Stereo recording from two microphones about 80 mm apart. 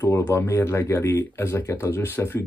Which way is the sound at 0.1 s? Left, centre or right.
Left.